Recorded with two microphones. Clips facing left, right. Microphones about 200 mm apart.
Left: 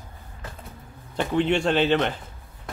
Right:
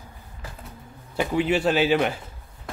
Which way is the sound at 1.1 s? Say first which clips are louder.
Even; 5° right (ahead or behind).